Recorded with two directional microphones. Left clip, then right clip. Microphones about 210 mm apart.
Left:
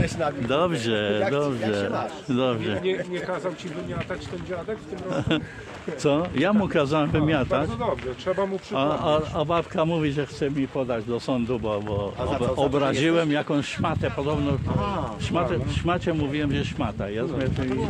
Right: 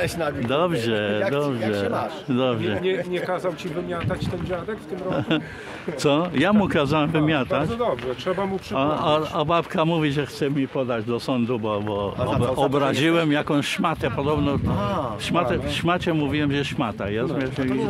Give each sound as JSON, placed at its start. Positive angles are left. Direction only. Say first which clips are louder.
{"t": 0.5, "sound": "speech", "louder": "right 2 dB", "side_deg": 5}
{"t": 2.8, "sound": "speech", "louder": "right 3 dB", "side_deg": -40}
{"t": 6.0, "sound": "speech", "louder": "right 2 dB", "side_deg": -20}
{"t": 8.7, "sound": "speech", "louder": "right 2 dB", "side_deg": -10}
{"t": 9.0, "sound": "speech", "louder": "right 2 dB", "side_deg": -20}